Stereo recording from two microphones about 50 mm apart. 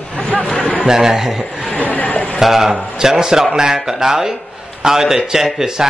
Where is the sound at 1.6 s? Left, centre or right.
Left.